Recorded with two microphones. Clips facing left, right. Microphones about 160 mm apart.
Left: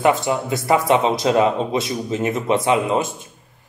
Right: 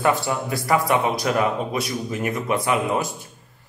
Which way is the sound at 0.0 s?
20° left (ahead or behind).